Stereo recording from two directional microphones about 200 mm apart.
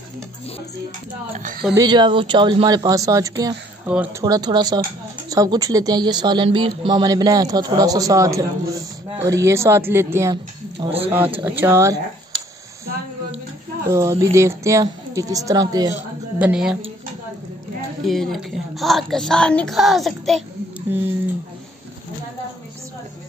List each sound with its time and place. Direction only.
1.8 s speech: 20° right (ahead or behind)
4.2 s speech: 20° right (ahead or behind)
11.1 s speech: 10° right (ahead or behind)
13.8 s speech: 15° right (ahead or behind)
16.3 s a woman's voice: 5° right (ahead or behind)
18.0 s a woman's voice: centre (ahead or behind)